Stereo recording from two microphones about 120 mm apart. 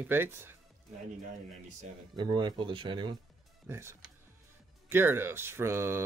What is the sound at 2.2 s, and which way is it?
Speech, 40° right (ahead or behind).